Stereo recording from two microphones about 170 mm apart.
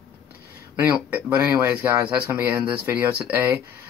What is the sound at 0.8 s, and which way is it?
Speech, 10° right (ahead or behind).